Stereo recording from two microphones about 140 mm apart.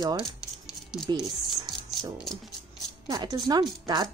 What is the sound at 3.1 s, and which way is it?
A woman's voice, 30° right (ahead or behind).